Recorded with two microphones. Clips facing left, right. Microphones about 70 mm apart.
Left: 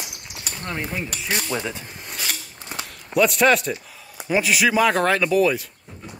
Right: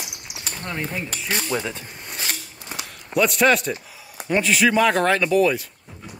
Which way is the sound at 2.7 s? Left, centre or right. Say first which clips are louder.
Left 1 dB; centre.